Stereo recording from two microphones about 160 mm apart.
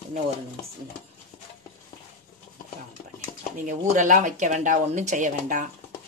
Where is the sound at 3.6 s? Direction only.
50° right (ahead or behind).